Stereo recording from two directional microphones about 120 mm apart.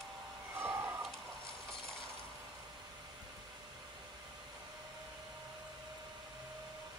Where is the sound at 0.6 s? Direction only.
20° right (ahead or behind).